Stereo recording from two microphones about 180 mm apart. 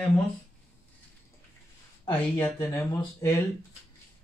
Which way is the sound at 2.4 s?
15° left (ahead or behind).